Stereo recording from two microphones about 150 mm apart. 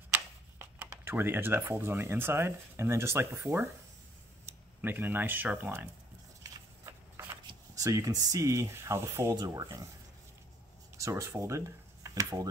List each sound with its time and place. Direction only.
0.1 s speech: 15° right (ahead or behind)
7.7 s speech: 20° right (ahead or behind)
11.0 s speech: 20° right (ahead or behind)